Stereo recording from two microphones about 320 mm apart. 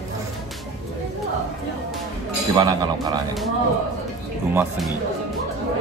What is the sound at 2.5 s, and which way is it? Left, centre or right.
Speech, centre.